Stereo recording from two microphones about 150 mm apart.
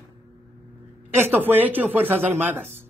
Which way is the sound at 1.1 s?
15° right (ahead or behind).